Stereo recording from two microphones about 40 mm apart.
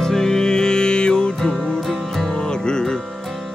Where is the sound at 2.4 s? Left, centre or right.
Centre.